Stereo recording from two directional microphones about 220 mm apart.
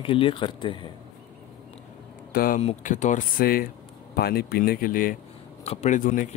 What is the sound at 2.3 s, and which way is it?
Speech, 40° left (ahead or behind).